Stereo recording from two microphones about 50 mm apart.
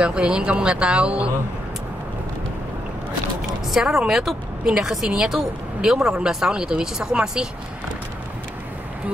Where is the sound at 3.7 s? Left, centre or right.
Centre.